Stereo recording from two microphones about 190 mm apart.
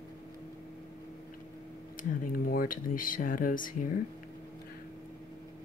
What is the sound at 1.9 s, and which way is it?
Speech, 50° left (ahead or behind).